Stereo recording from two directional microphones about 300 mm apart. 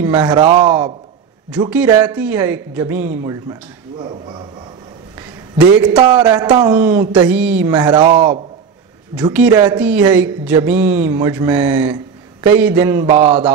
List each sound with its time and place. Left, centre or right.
0.0 s speech: centre
5.9 s speech: centre